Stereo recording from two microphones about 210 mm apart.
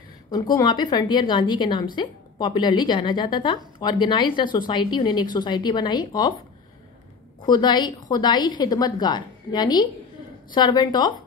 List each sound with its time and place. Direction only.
0.3 s a woman's voice: 20° left (ahead or behind)
7.4 s a woman's voice: 20° left (ahead or behind)